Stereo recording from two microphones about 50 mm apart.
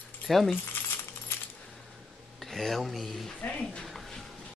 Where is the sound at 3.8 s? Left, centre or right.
Centre.